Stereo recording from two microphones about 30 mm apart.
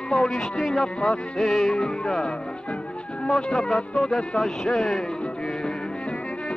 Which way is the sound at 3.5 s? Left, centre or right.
Left.